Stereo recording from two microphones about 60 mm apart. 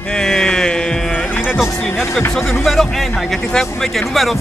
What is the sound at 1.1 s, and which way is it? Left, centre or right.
Music, left.